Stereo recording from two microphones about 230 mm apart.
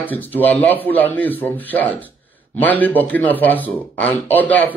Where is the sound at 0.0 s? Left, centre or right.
Centre.